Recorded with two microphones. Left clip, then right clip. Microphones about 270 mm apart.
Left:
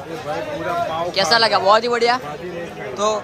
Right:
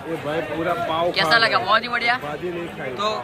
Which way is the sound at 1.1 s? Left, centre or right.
Centre.